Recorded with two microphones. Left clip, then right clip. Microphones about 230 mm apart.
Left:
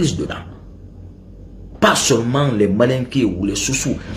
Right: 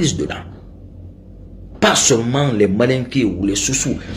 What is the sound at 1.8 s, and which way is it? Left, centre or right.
A man's voice, centre.